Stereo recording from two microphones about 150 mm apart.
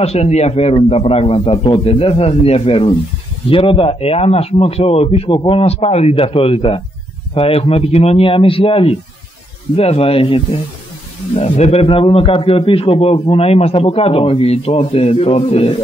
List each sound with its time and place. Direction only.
0.0 s a man's voice: 45° left (ahead or behind)